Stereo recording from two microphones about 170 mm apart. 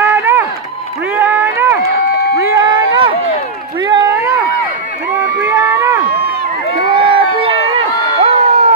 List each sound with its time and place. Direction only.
0.0 s run: 10° right (ahead or behind)
5.4 s a sound: 10° right (ahead or behind)
6.7 s crowd: 30° right (ahead or behind)